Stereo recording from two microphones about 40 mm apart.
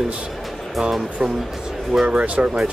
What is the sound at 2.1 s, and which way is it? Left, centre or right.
Speech, right.